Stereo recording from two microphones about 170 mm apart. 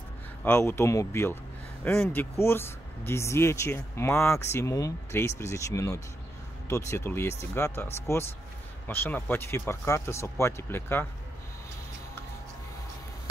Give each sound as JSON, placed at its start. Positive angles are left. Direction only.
{"t": 0.4, "sound": "speech", "side_deg": 15}